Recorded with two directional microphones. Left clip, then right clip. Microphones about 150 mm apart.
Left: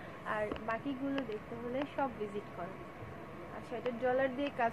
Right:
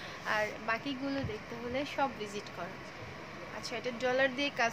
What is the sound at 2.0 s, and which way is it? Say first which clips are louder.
Speech: right 4 dB; 15° right (ahead or behind).